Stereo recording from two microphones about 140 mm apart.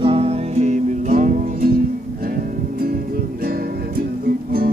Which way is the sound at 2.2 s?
90° right.